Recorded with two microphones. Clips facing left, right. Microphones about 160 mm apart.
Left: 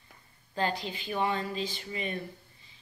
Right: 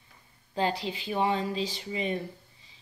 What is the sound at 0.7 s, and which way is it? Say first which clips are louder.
Speech: right 3 dB; 90° right.